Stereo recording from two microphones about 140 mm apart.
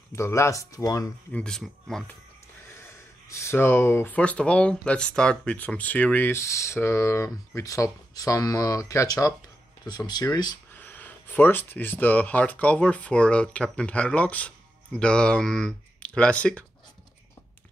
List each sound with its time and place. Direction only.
0.1 s speech: 20° left (ahead or behind)
1.3 s speech: 5° left (ahead or behind)
3.3 s speech: 20° left (ahead or behind)
10.7 s speech: 10° left (ahead or behind)